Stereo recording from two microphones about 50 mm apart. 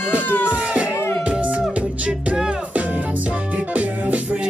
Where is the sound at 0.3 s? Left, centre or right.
Left.